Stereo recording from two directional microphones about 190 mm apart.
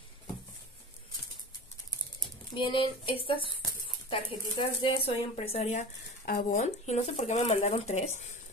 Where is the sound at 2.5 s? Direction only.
25° left (ahead or behind).